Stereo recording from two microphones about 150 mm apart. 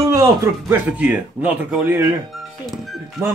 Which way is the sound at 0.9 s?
10° right (ahead or behind).